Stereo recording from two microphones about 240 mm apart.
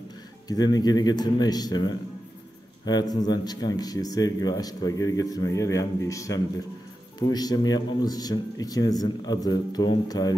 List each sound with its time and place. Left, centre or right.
0.5 s speech: centre